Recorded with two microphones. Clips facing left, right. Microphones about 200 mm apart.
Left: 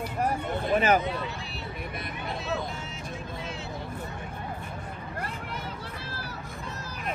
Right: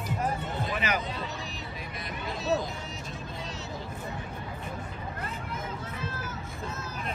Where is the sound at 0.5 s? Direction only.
50° left (ahead or behind).